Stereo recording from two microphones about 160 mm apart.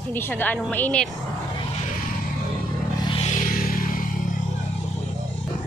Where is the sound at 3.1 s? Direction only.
40° left (ahead or behind).